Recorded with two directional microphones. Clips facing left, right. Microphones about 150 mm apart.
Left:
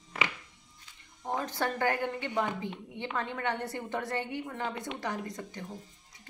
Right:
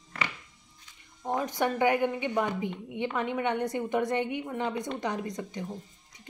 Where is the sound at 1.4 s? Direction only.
15° right (ahead or behind).